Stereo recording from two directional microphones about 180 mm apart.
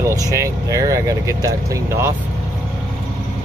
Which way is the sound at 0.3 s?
20° right (ahead or behind).